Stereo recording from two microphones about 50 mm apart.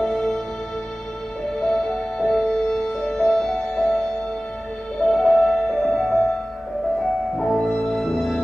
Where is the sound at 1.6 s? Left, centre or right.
Centre.